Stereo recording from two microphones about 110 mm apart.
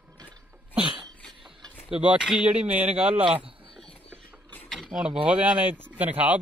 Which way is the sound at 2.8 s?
65° right (ahead or behind).